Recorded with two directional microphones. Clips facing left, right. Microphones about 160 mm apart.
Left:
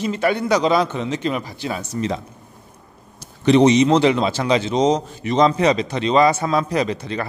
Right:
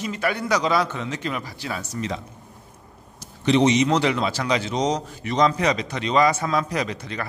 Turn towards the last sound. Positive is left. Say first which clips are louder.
# left 6 dB
turn(degrees=30)  # may be behind; listen again after turning